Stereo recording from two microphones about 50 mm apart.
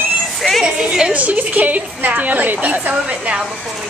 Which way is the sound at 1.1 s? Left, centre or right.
Right.